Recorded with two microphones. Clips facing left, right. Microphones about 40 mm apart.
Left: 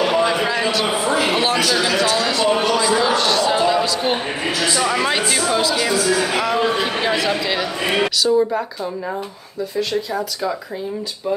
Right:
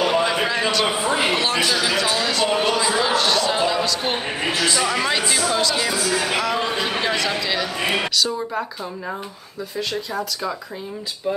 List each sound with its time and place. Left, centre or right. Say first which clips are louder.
0.0 s a sound: left 2 dB; centre
1.0 s speech: left 2 dB; centre
1.3 s a man's voice: left 3 dB; centre
1.9 s a man's voice: left 3 dB; centre
9.8 s a man's voice: left 4 dB; centre